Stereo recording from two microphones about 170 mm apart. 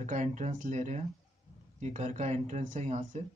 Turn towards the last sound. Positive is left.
turn(degrees=-45)  # may be behind; listen again after turning